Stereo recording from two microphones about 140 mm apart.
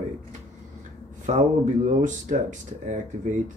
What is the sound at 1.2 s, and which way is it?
Speech, 60° right (ahead or behind).